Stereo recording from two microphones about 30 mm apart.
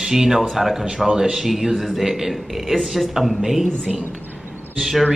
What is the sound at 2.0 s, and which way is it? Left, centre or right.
A man's voice, centre.